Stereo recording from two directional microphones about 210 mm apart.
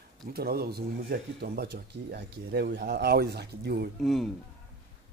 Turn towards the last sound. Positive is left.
turn(degrees=0)  # may be behind; listen again after turning